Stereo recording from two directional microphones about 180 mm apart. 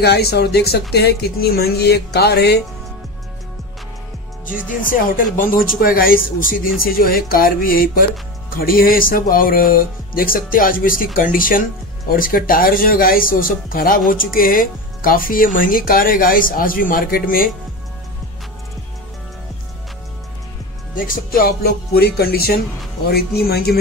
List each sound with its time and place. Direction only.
0.0 s speech: 65° left (ahead or behind)
4.8 s speech: 50° left (ahead or behind)
21.1 s speech: 55° left (ahead or behind)